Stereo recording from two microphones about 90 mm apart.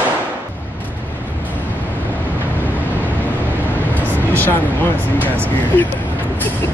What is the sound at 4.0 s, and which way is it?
Speech, 20° left (ahead or behind).